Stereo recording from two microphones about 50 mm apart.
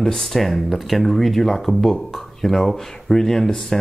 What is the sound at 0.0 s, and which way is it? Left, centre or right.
Speech, centre.